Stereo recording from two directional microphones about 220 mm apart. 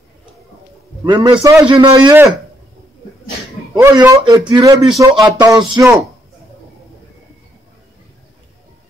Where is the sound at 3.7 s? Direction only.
20° right (ahead or behind).